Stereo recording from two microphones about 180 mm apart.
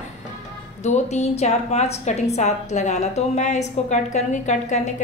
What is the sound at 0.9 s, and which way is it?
A woman's voice, 40° left (ahead or behind).